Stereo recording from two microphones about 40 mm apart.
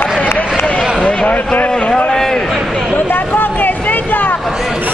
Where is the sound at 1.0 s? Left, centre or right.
Left.